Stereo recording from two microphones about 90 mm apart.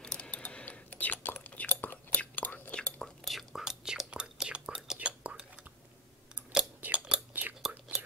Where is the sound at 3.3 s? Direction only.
Centre (ahead or behind).